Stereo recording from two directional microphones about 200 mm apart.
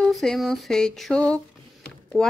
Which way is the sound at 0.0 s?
Centre (ahead or behind).